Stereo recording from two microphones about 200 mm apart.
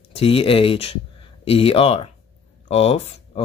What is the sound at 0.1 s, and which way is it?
Speech, 30° left (ahead or behind).